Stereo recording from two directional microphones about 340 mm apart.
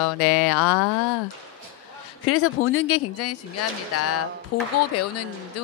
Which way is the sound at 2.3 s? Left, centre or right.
Left.